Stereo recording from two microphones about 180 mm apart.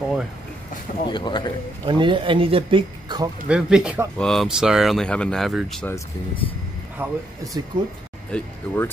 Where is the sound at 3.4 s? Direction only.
5° right (ahead or behind).